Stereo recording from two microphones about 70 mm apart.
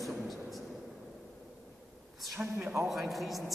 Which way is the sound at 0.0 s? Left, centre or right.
Centre.